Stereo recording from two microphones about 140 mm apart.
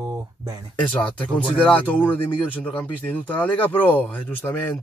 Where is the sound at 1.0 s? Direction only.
10° left (ahead or behind).